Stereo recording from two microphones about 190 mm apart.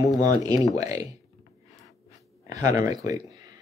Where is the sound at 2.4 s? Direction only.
20° right (ahead or behind).